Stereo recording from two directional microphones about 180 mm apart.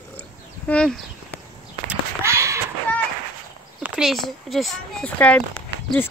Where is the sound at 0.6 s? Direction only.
5° left (ahead or behind).